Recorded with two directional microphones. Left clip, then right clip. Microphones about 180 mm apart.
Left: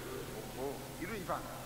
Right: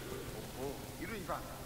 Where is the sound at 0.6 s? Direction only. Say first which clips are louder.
Left 2 dB; 35° left (ahead or behind).